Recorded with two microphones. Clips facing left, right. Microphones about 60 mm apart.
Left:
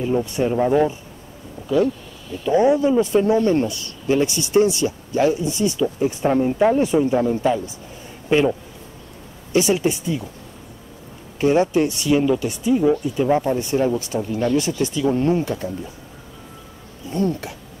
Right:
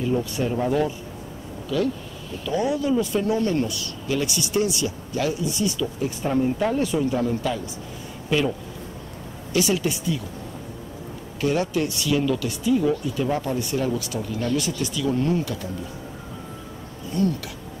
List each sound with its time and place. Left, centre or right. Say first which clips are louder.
0.0 s speech: left 4 dB; left
11.4 s speech: left 6 dB; left
17.1 s speech: left 2 dB; left